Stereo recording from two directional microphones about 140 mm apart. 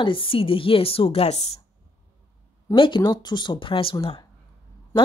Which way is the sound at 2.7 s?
35° left (ahead or behind).